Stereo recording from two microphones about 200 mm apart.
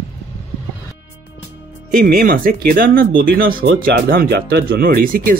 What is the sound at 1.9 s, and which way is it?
Speech, 45° right (ahead or behind).